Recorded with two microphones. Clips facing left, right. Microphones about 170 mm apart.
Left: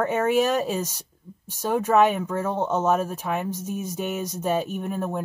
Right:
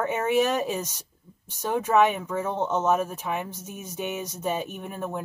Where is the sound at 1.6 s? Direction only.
10° left (ahead or behind).